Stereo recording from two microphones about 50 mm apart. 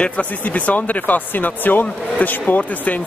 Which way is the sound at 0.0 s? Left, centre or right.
Left.